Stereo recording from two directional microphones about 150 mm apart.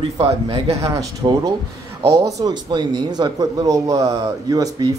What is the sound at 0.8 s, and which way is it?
Speech, 20° right (ahead or behind).